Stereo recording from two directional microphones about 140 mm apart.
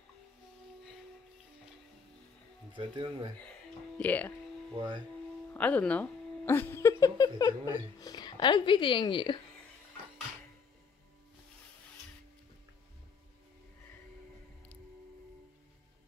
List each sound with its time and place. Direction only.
2.7 s speech: 35° right (ahead or behind)
4.0 s speech: 10° left (ahead or behind)
4.7 s speech: 35° right (ahead or behind)
5.5 s speech: 10° left (ahead or behind); by 9.4 s 35° left (ahead or behind)